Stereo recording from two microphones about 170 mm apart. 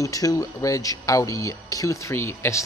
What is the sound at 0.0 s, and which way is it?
Speech, 20° left (ahead or behind).